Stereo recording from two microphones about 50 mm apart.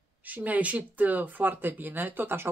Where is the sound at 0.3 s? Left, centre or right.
Right.